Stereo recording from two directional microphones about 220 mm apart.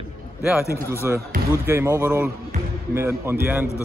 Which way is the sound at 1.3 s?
40° right (ahead or behind).